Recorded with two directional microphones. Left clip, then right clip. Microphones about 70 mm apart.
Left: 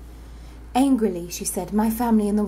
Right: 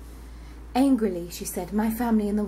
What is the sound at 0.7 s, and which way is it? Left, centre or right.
A woman's voice, left.